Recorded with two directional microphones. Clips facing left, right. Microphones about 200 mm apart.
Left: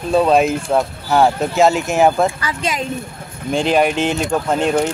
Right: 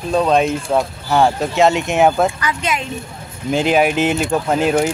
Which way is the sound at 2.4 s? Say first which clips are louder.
Right 1 dB; 35° left (ahead or behind).